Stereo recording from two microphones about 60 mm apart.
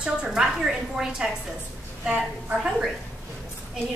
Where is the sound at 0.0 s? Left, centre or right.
Centre.